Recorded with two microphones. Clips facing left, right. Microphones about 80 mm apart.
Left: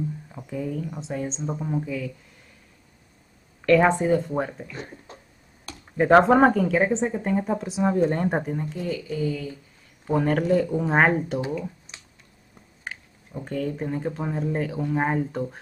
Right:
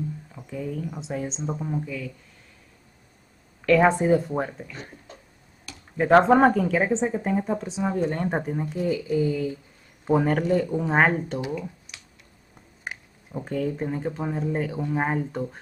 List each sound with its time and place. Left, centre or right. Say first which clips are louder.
0.3 s a sound: left 3 dB; centre
0.6 s speech: left 1 dB; centre
3.6 s speech: even; centre
5.9 s speech: left 1 dB; centre
8.5 s speech: right 3 dB; centre
10.1 s speech: even; centre
11.9 s a sound: even; left
12.8 s speech: right 1 dB; centre